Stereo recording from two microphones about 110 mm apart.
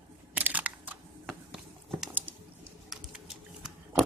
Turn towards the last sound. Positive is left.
turn(degrees=-5)  # may be behind; listen again after turning